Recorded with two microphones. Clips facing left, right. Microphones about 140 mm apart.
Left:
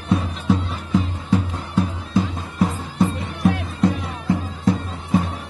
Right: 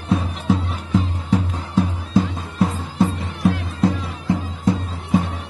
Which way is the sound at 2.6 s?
Centre (ahead or behind).